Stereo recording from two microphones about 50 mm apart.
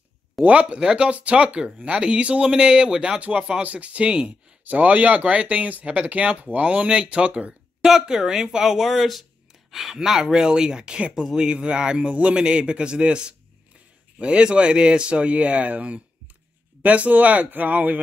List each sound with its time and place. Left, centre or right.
0.4 s speech: right
3.2 s speech: right
7.8 s speech: centre; by 18.0 s right